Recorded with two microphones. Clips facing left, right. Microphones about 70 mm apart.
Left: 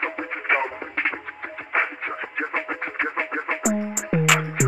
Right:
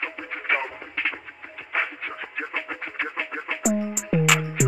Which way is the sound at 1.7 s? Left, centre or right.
Left.